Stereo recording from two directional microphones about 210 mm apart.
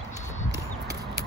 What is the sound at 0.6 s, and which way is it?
Clip-clop, 15° right (ahead or behind).